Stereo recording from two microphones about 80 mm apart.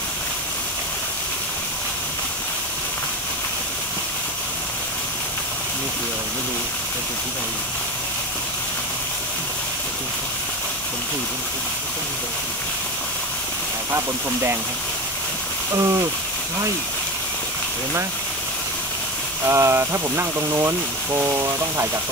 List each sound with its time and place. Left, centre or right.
13.9 s speech: right
15.7 s speech: right
19.4 s speech: right